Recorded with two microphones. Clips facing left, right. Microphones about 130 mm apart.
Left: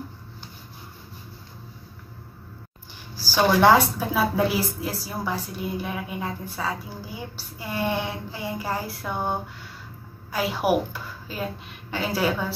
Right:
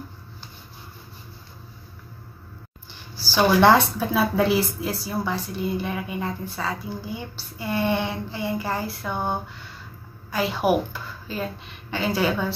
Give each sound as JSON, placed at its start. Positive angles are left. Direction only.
{"t": 3.6, "sound": "a woman's voice", "side_deg": 10}